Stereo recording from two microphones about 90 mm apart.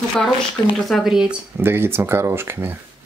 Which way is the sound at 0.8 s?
Centre (ahead or behind).